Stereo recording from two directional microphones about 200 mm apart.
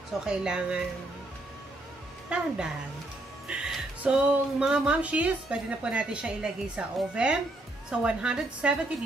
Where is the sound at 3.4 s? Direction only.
5° right (ahead or behind).